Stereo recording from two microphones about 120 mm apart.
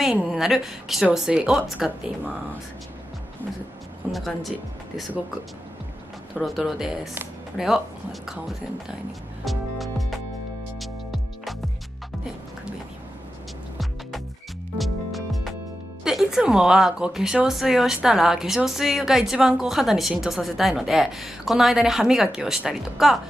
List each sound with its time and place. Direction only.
0.2 s speech: centre (ahead or behind)
4.1 s speech: centre (ahead or behind)
6.4 s speech: centre (ahead or behind)
9.4 s music: centre (ahead or behind)
14.8 s music: centre (ahead or behind)
16.0 s speech: 5° right (ahead or behind)